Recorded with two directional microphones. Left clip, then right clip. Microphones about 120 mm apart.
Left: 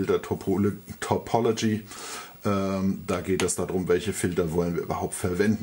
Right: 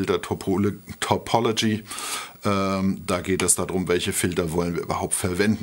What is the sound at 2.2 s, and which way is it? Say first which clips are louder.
Speech: right 3 dB; 85° right.